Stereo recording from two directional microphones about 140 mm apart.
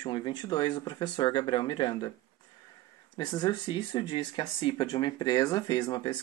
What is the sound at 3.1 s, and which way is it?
Speech, 30° left (ahead or behind).